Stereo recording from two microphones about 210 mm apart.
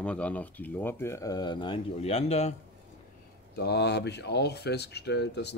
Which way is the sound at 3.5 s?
50° left (ahead or behind).